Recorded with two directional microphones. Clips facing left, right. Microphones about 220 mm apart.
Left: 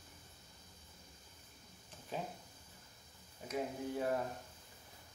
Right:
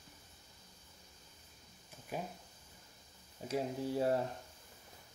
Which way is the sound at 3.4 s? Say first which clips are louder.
Right 3 dB; 30° right (ahead or behind).